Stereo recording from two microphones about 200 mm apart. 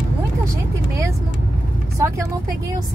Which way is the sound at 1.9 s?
15° right (ahead or behind).